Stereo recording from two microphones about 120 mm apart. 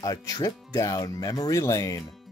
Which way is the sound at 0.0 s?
25° left (ahead or behind).